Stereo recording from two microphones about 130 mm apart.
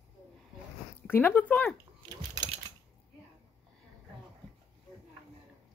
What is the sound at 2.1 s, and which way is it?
Typing, 30° right (ahead or behind).